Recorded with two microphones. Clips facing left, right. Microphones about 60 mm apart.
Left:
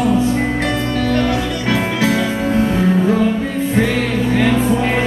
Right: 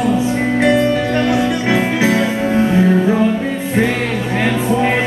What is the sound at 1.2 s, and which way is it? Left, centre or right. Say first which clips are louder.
Music: right 3 dB; centre.